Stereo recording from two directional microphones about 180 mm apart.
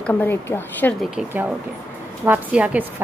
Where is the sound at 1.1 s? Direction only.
10° right (ahead or behind).